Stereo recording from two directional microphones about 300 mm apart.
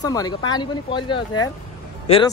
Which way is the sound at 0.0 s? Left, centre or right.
Centre.